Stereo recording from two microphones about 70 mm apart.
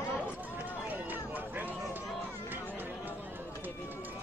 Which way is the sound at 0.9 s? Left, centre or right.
Right.